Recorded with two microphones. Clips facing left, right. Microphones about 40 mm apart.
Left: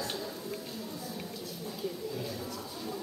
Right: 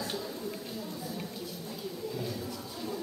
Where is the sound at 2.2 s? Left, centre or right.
Centre.